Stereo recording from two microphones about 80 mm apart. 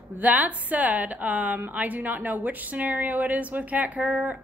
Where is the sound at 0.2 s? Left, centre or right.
Centre.